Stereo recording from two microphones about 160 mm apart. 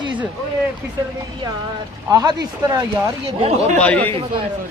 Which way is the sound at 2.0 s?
25° right (ahead or behind).